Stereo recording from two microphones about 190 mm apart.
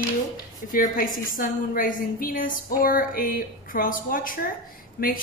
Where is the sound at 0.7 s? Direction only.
45° left (ahead or behind).